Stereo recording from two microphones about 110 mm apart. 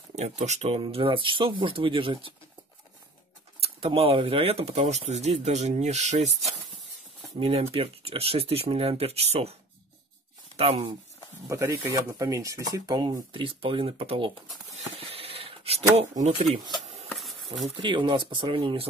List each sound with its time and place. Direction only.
0.1 s speech: 90° right; by 2.3 s 50° right (ahead or behind)
3.6 s speech: 60° right (ahead or behind); by 6.3 s 90° right
7.3 s speech: 60° right (ahead or behind)
11.4 s speech: 20° right (ahead or behind); by 14.3 s 60° right (ahead or behind)
14.7 s a sound: 60° right (ahead or behind)
17.1 s a sound: centre (ahead or behind)
17.7 s speech: 45° right (ahead or behind)